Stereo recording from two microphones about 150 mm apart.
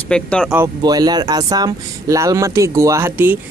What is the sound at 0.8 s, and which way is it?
Speech, 25° right (ahead or behind).